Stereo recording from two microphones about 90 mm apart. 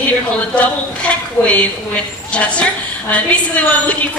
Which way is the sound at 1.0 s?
15° left (ahead or behind).